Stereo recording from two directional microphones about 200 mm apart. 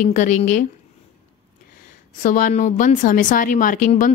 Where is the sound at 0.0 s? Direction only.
40° left (ahead or behind).